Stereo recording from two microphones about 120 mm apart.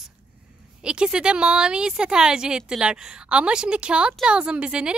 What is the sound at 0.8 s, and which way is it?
A woman's voice, 5° right (ahead or behind).